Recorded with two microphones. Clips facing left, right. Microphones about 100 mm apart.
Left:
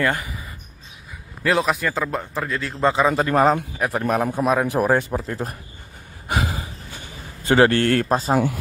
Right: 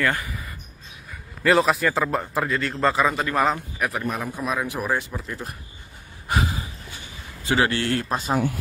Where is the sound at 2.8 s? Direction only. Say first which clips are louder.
Left 3 dB; 20° left (ahead or behind).